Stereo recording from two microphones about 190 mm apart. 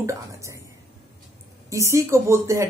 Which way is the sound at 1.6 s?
15° right (ahead or behind).